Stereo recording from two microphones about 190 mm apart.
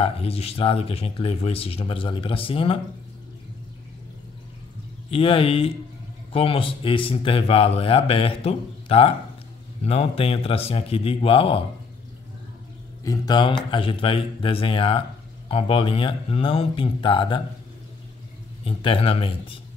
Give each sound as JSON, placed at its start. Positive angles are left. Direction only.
{"t": 0.0, "sound": "speech", "side_deg": 30}
{"t": 5.1, "sound": "a man's voice", "side_deg": 30}
{"t": 13.0, "sound": "speech", "side_deg": 20}
{"t": 18.6, "sound": "speech", "side_deg": 30}